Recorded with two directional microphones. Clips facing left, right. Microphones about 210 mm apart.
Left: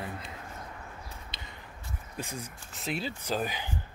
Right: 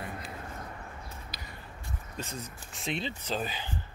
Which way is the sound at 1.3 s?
25° left (ahead or behind).